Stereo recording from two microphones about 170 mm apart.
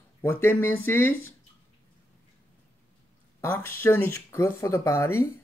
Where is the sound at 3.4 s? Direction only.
15° left (ahead or behind).